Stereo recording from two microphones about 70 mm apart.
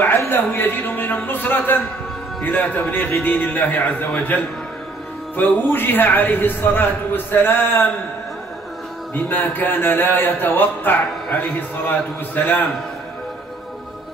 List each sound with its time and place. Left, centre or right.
0.2 s speech: left
9.1 s speech: left